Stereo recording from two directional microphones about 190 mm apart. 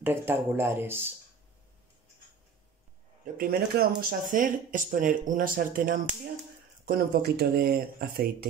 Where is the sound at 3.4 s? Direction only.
50° right (ahead or behind).